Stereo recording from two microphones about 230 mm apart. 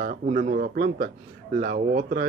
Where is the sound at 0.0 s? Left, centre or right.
Right.